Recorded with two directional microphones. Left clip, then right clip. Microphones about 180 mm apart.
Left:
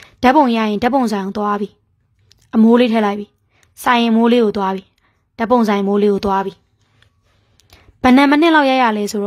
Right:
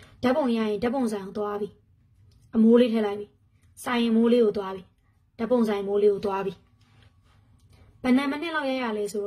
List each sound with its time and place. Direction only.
0.2 s a woman's voice: 55° left (ahead or behind)
8.0 s a woman's voice: 60° left (ahead or behind)